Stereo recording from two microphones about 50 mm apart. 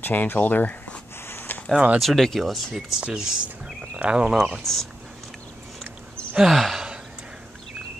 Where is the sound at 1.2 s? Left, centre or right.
Left.